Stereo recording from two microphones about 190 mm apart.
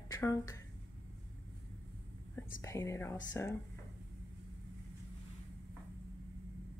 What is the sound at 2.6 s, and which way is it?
Speech, 15° left (ahead or behind).